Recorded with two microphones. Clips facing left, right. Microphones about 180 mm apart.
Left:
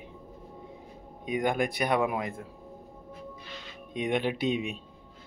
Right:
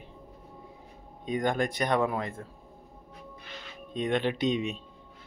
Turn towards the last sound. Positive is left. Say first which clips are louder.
# right 1 dB
turn(degrees=10)  # may be behind; listen again after turning